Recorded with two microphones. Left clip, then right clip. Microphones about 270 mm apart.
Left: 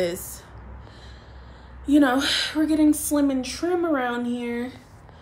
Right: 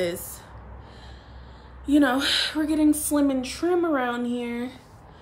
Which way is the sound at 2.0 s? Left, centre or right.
Centre.